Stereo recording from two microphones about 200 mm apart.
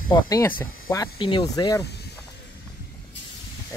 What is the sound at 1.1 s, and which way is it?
Speech, 25° left (ahead or behind).